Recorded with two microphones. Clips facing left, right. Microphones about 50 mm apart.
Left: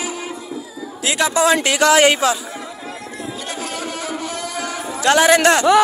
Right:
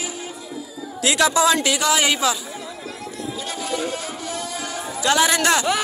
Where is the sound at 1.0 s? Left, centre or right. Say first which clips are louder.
Right 1 dB; left.